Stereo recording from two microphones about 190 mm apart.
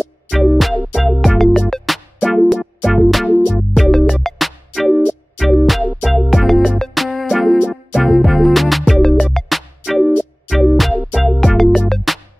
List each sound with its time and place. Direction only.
0.3 s music: centre (ahead or behind)